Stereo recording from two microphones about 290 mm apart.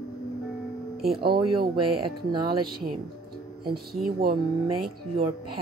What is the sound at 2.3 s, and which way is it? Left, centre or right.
Speech, centre.